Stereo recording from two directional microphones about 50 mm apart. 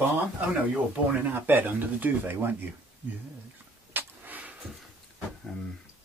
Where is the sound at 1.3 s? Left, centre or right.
Right.